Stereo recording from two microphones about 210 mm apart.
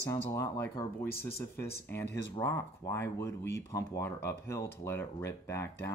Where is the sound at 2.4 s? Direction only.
10° left (ahead or behind).